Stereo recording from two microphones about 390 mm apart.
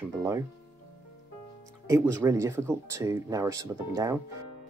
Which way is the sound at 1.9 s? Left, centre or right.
Centre.